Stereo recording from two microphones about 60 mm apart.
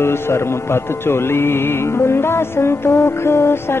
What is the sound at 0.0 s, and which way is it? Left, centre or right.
Music, left.